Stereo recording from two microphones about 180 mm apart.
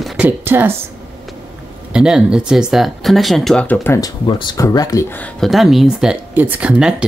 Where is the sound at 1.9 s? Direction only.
5° right (ahead or behind); by 4.1 s 15° left (ahead or behind).